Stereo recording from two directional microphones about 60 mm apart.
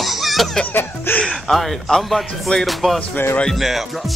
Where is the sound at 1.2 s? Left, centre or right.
Centre.